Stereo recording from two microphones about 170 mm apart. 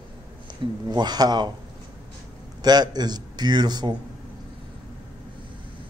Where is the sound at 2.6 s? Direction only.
25° right (ahead or behind).